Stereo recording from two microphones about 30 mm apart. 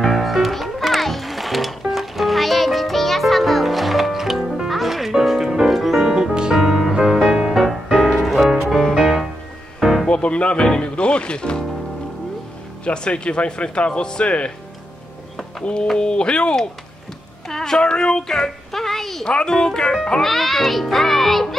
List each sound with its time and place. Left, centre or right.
0.0 s music: centre
4.4 s music: centre
4.6 s music: centre
10.0 s music: left
10.8 s speech: left
12.8 s speech: left
14.2 s speech: left
15.6 s speech: left
17.5 s a sound: centre
19.2 s a child's voice: left
20.2 s a child's voice: centre